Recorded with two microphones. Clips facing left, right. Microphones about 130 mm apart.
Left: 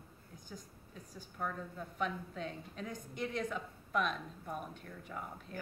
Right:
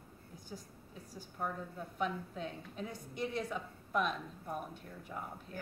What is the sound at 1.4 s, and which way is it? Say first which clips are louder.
A woman's voice: even; 10° right (ahead or behind).